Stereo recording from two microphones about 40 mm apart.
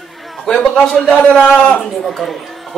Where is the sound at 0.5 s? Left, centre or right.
Centre.